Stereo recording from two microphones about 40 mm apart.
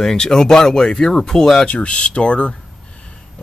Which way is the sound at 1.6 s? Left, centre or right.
Left.